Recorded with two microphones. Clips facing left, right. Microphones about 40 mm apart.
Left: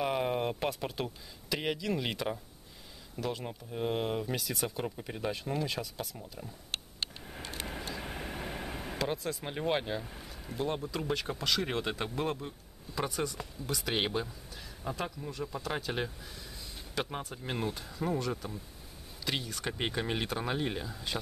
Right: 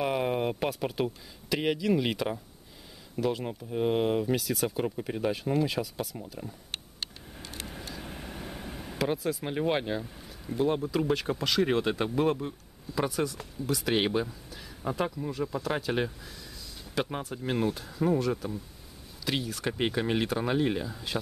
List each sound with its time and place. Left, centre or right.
0.0 s speech: centre
7.6 s vehicle: centre
8.9 s speech: centre